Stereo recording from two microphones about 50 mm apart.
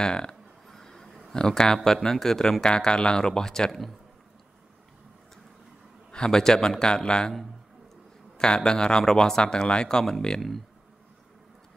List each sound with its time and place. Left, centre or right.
0.0 s speech: centre
0.7 s a sound: centre
1.3 s speech: centre
6.1 s speech: centre
8.4 s speech: centre